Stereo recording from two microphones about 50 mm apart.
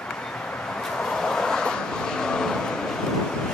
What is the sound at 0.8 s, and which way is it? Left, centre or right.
Vehicle, centre.